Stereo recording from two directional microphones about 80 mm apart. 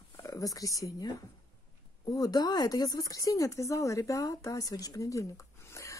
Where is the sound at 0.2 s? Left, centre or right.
Left.